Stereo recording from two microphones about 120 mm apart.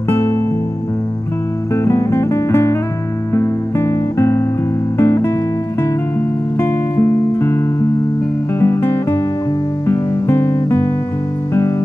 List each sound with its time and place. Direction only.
0.1 s music: 20° left (ahead or behind)
1.9 s guitar: 20° left (ahead or behind)
3.3 s music: 25° left (ahead or behind)
6.6 s music: 20° left (ahead or behind)